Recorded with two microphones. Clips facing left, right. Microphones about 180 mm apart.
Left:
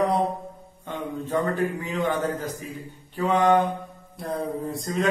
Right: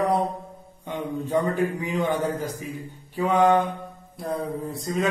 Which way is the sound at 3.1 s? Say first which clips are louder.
Right 1 dB; 10° right (ahead or behind).